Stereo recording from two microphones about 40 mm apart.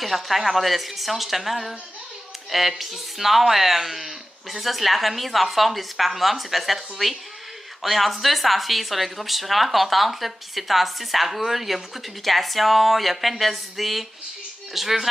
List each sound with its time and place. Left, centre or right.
0.0 s speech: centre
2.8 s speech: centre